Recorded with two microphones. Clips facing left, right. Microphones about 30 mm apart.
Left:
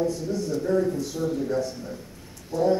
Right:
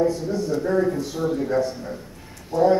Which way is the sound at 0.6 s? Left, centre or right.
Right.